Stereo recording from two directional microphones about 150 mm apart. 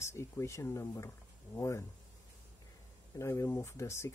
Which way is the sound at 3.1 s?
20° left (ahead or behind).